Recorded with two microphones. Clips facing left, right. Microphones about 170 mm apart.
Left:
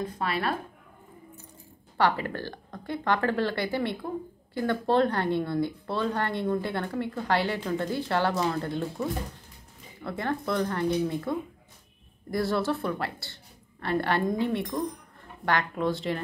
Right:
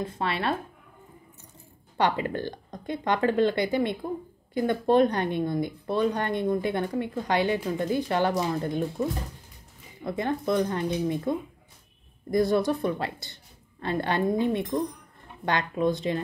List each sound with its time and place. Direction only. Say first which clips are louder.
0.0 s speech: right 1 dB; 25° right (ahead or behind)
2.0 s speech: right 1 dB; 20° right (ahead or behind)
10.0 s speech: right 3 dB; 20° right (ahead or behind)